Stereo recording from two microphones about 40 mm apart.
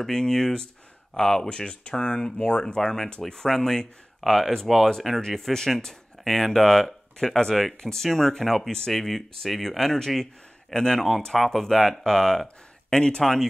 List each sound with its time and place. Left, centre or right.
0.0 s speech: centre
11.3 s speech: centre
12.9 s speech: left
13.2 s speech: centre